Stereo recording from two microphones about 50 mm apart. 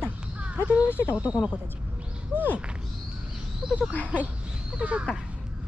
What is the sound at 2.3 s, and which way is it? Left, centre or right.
Speech, right.